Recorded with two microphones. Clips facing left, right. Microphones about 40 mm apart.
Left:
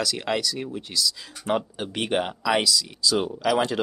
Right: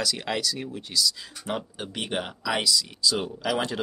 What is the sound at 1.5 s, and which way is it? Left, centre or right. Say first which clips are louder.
Speech: left 6 dB; centre.